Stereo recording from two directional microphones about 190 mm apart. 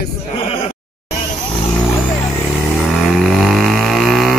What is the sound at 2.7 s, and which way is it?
Vehicle, centre (ahead or behind).